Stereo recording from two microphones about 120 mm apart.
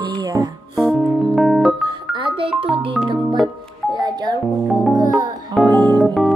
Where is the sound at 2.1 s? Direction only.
45° right (ahead or behind).